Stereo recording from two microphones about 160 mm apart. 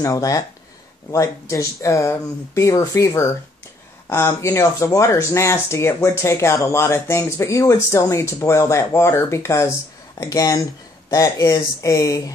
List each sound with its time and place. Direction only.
0.0 s speech: 20° left (ahead or behind)